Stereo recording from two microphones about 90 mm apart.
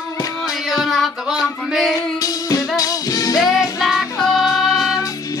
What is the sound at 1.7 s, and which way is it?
Female singing, 5° right (ahead or behind).